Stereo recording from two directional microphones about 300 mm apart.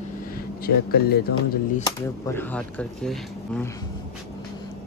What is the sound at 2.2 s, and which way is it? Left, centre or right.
Speech, centre.